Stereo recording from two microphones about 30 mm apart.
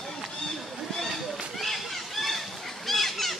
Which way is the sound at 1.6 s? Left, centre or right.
Centre.